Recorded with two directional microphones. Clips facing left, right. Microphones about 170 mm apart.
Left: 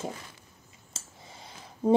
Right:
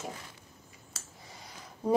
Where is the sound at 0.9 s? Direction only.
25° left (ahead or behind).